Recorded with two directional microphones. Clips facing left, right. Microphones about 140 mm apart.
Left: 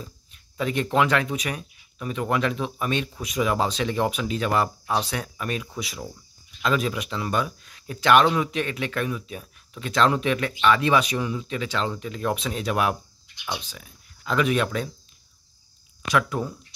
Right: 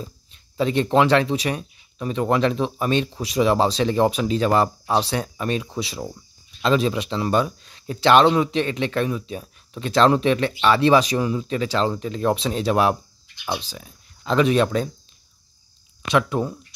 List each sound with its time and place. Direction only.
0.0 s speech: 30° right (ahead or behind)
16.1 s speech: 25° right (ahead or behind)